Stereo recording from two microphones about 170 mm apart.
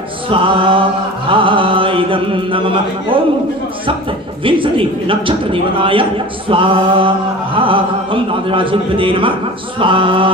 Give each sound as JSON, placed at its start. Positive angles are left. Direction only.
{"t": 0.3, "sound": "a man's voice", "side_deg": -30}
{"t": 4.5, "sound": "a man's voice", "side_deg": -30}